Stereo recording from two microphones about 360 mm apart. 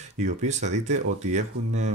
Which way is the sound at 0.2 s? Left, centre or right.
Centre.